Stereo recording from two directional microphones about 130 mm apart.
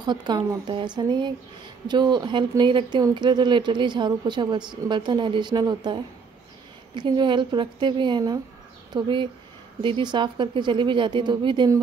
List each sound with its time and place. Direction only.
0.0 s speech: 35° right (ahead or behind)
7.0 s speech: 35° right (ahead or behind)